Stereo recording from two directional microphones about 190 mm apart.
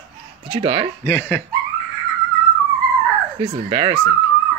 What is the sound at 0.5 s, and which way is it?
Speech, 30° right (ahead or behind).